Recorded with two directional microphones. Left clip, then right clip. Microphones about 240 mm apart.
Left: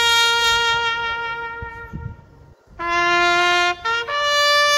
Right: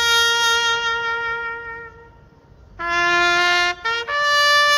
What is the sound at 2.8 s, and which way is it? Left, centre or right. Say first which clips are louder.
Music: even; right.